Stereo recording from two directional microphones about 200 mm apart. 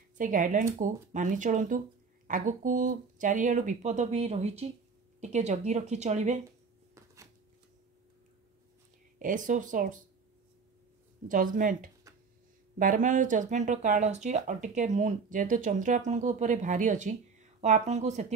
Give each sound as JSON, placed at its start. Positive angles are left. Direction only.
{"t": 0.2, "sound": "speech", "side_deg": -40}
{"t": 9.2, "sound": "speech", "side_deg": -40}
{"t": 11.2, "sound": "speech", "side_deg": -40}